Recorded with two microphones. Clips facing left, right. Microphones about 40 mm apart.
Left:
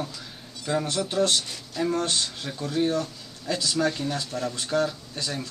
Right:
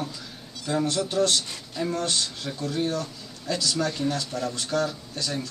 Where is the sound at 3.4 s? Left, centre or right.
Centre.